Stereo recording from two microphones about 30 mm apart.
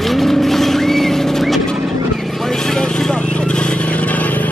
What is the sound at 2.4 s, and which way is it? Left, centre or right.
Vehicle, centre.